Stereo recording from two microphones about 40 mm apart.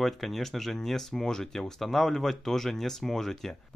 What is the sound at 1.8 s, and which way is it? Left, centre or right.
Speech, centre.